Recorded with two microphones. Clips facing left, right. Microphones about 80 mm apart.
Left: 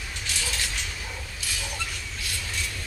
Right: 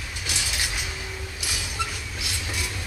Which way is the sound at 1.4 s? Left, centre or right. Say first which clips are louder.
Right 4 dB; centre.